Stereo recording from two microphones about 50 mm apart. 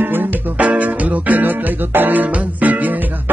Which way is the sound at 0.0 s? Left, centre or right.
Right.